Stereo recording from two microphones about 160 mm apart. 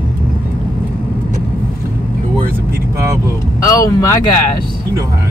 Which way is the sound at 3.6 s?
20° left (ahead or behind).